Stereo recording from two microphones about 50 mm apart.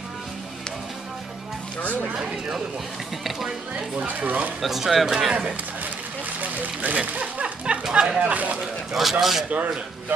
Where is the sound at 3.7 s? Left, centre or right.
Right.